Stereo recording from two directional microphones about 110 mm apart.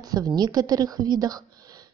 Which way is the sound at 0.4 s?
35° right (ahead or behind).